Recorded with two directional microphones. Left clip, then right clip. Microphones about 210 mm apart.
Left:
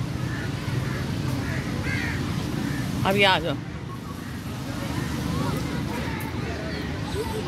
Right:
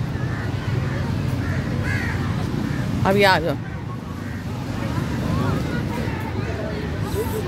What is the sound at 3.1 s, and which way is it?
Speech, 15° right (ahead or behind).